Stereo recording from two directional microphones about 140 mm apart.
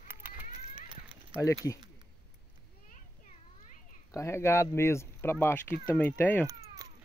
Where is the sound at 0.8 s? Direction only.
40° right (ahead or behind).